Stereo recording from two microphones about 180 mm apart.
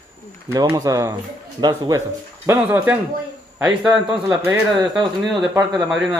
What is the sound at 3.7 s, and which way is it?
A man's voice, 25° right (ahead or behind).